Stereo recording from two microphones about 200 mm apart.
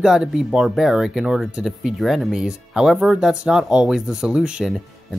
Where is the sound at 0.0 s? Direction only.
5° right (ahead or behind).